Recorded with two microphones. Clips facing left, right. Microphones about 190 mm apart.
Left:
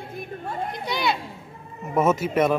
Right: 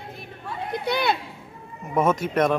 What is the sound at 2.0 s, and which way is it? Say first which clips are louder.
Speech: left 1 dB; 5° left (ahead or behind).